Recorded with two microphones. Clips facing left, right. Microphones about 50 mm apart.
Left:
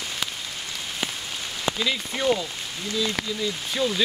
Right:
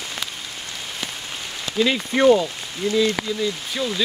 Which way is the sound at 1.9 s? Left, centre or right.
Right.